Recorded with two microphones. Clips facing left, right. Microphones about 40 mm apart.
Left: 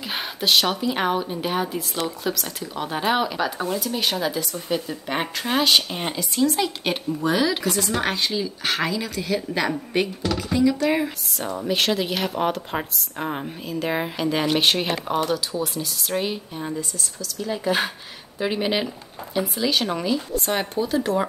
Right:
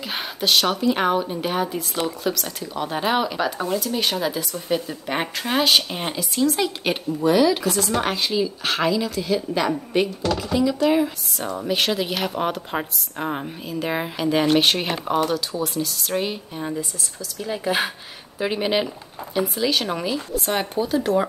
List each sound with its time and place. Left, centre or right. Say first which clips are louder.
0.1 s speech: even; centre